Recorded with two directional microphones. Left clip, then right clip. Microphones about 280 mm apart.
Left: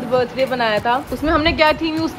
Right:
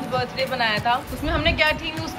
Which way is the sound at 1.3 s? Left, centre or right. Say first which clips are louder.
Left 5 dB; centre.